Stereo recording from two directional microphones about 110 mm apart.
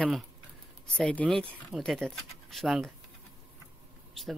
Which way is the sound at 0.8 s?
5° left (ahead or behind).